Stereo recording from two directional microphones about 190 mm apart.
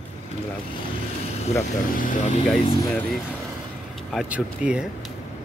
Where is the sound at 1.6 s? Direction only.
40° left (ahead or behind).